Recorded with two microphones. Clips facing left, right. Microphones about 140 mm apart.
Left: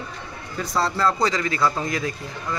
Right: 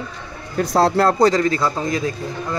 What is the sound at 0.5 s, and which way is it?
Speech, 55° right (ahead or behind).